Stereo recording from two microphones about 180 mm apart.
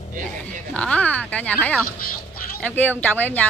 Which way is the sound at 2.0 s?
55° left (ahead or behind).